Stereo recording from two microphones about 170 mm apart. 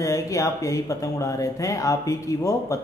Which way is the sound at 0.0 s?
20° left (ahead or behind).